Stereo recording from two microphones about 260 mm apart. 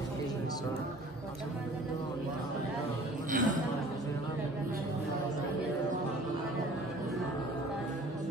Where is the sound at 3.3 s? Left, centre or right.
Right.